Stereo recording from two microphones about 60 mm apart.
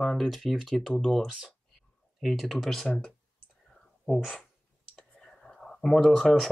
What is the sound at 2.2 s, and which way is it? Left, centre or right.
Speech, centre.